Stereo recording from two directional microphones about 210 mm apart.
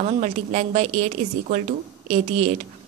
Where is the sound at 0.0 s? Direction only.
35° right (ahead or behind).